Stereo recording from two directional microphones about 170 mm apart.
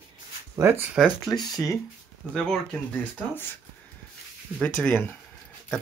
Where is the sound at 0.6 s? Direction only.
10° right (ahead or behind).